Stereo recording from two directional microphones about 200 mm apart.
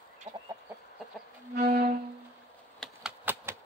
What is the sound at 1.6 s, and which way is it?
Music, 50° right (ahead or behind).